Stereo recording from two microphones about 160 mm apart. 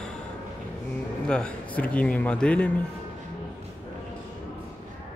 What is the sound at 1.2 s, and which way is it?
Speech, 5° left (ahead or behind).